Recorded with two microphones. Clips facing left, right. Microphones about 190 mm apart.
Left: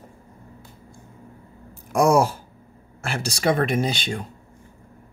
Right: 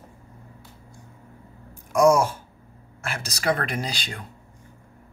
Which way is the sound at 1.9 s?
35° left (ahead or behind).